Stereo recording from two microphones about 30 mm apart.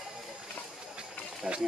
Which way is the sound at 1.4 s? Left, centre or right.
Right.